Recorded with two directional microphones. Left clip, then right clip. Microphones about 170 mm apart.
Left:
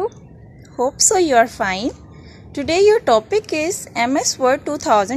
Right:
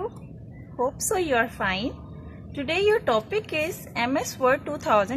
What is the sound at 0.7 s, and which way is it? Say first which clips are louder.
A woman's voice: left 9 dB; 35° left (ahead or behind).